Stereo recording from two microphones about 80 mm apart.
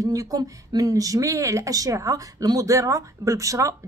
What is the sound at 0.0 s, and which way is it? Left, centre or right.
Speech, right.